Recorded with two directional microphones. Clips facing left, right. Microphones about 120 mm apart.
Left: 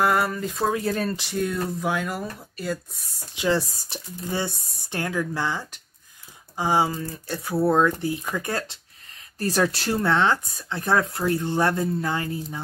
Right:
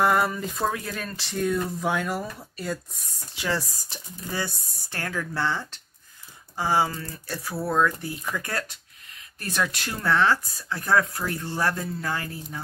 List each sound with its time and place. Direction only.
0.0 s speech: centre (ahead or behind)
0.7 s speech: 35° left (ahead or behind)
1.4 s speech: centre (ahead or behind)
3.3 s speech: 25° left (ahead or behind)
9.4 s speech: 35° left (ahead or behind)